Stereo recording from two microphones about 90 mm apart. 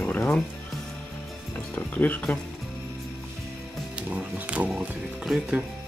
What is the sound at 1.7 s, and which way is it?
Speech, 20° left (ahead or behind).